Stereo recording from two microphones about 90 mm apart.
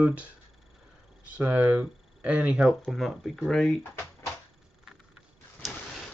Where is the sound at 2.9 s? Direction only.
Centre (ahead or behind).